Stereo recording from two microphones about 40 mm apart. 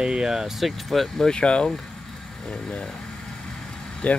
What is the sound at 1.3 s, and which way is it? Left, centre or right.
Speech, left.